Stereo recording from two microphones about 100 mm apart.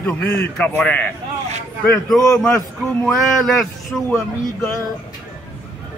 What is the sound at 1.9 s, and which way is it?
A man's voice, 5° left (ahead or behind).